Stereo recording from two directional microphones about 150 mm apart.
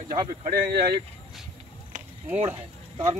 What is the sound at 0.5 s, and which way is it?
Speech, 90° right.